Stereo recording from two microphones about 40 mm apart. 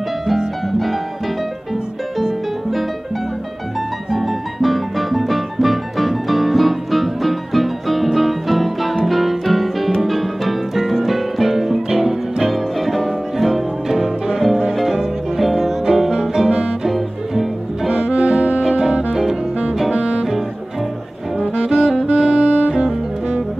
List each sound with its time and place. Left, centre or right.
0.7 s music: centre
4.1 s music: centre
16.4 s music: right
16.8 s music: centre
18.0 s accordion: right
18.6 s music: centre
18.9 s music: right
21.6 s saxophone: centre
22.0 s saxophone: right
22.8 s music: centre